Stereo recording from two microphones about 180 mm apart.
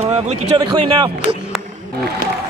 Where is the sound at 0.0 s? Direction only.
40° right (ahead or behind).